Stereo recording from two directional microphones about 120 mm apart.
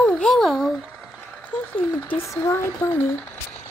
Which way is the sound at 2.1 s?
25° left (ahead or behind).